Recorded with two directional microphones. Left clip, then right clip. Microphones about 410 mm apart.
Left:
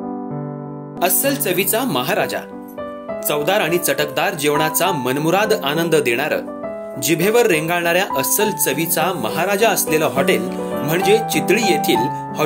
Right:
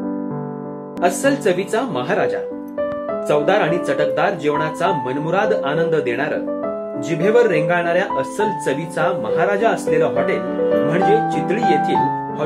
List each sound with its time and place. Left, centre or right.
1.0 s speech: left